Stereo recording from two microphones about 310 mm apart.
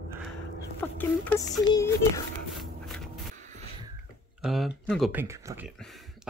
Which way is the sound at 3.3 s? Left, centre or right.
Right.